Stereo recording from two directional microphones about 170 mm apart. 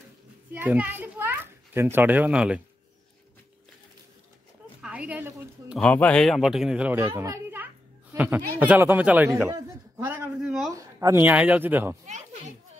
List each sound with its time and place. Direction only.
0.5 s a child's voice: 10° right (ahead or behind)
4.8 s a woman's voice: 10° right (ahead or behind)
5.8 s speech: 5° left (ahead or behind); by 7.1 s 10° right (ahead or behind)
7.2 s a sound: 10° right (ahead or behind)
8.5 s a man's voice: 10° right (ahead or behind)
10.7 s a woman's voice: 20° right (ahead or behind)
12.1 s a child's voice: 45° right (ahead or behind)